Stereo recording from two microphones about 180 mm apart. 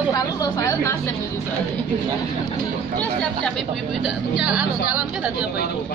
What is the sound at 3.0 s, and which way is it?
A woman's voice, 5° left (ahead or behind).